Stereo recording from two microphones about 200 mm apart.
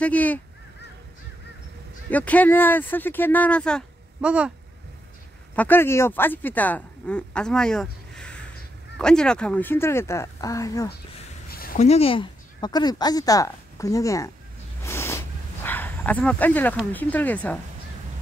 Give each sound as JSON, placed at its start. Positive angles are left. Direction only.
{"t": 0.0, "sound": "speech", "side_deg": 5}
{"t": 2.0, "sound": "speech", "side_deg": 5}
{"t": 4.2, "sound": "speech", "side_deg": -5}
{"t": 5.6, "sound": "speech", "side_deg": 10}
{"t": 11.5, "sound": "a sound", "side_deg": 45}
{"t": 11.8, "sound": "speech", "side_deg": 30}
{"t": 14.8, "sound": "dog", "side_deg": 15}
{"t": 16.9, "sound": "speech", "side_deg": 10}